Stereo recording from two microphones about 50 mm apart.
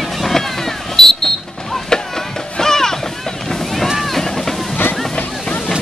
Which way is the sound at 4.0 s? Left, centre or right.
Centre.